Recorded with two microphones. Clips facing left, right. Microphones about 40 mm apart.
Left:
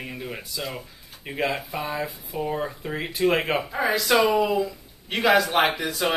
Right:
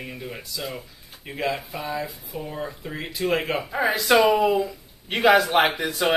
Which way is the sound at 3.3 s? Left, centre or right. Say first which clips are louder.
Left 1 dB; centre.